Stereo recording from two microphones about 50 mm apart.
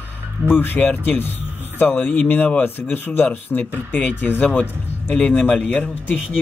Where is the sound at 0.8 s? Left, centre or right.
Left.